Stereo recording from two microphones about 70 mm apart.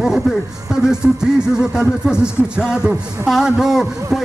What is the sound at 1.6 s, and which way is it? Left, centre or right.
Speech, centre.